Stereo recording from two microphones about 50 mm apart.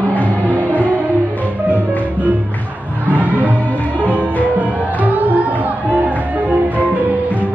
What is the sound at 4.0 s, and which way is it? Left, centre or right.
Music, right.